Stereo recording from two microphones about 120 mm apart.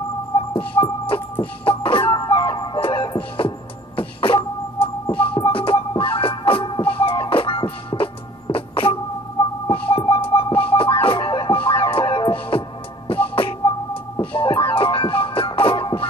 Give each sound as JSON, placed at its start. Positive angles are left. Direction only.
{"t": 0.6, "sound": "music", "side_deg": 45}
{"t": 2.2, "sound": "ice cream truck", "side_deg": 35}
{"t": 3.0, "sound": "music", "side_deg": 45}
{"t": 14.5, "sound": "music", "side_deg": 20}
{"t": 14.8, "sound": "music", "side_deg": 45}